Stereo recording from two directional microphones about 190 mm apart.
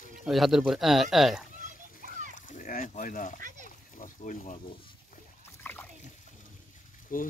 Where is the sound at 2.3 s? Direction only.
45° left (ahead or behind).